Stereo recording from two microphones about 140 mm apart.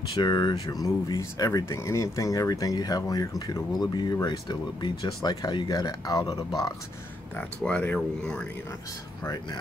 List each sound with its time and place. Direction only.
0.1 s speech: 30° left (ahead or behind)
7.3 s speech: 10° left (ahead or behind)
9.2 s speech: 25° left (ahead or behind)